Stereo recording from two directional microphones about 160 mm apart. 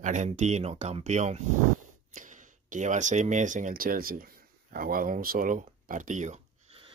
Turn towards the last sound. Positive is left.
turn(degrees=-40)  # may be behind; listen again after turning